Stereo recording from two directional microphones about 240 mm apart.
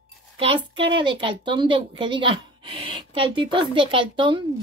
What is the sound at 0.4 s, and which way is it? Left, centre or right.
A woman's voice, right.